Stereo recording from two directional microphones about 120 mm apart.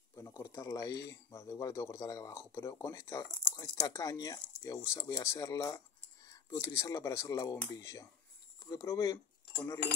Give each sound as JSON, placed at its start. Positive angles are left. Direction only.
{"t": 0.1, "sound": "speech", "side_deg": 25}